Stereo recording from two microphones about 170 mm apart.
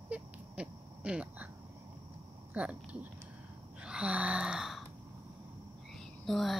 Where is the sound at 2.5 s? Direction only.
5° right (ahead or behind).